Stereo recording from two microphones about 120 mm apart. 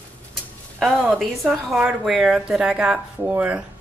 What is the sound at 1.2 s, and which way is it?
A woman's voice, centre (ahead or behind).